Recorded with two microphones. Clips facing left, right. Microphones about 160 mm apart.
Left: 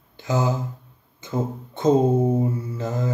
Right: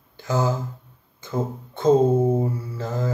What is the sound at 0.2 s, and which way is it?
Mantra, 20° left (ahead or behind).